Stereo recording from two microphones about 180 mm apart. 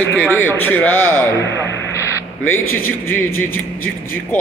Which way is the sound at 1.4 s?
85° left.